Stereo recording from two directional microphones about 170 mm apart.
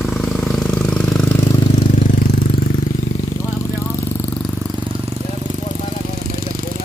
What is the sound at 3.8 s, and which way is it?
Vehicle, 15° left (ahead or behind).